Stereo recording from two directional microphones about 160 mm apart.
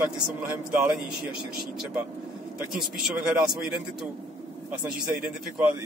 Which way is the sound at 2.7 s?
Centre (ahead or behind).